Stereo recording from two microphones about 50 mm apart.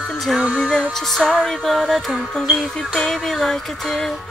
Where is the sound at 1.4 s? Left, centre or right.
Centre.